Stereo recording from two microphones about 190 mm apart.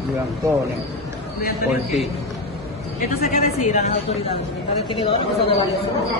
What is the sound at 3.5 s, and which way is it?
A woman's voice, 35° left (ahead or behind).